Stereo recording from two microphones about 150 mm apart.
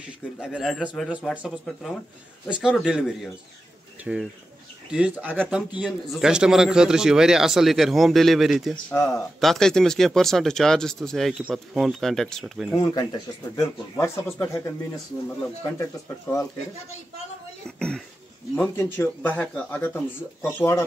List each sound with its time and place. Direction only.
0.0 s speech: 5° right (ahead or behind)
8.9 s speech: 20° left (ahead or behind)
9.4 s speech: 5° left (ahead or behind)
12.7 s speech: 25° left (ahead or behind)
15.8 s speech: 20° left (ahead or behind)
17.6 s speech: 5° left (ahead or behind)